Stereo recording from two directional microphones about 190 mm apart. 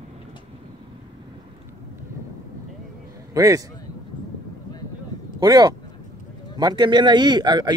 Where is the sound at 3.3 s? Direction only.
15° right (ahead or behind).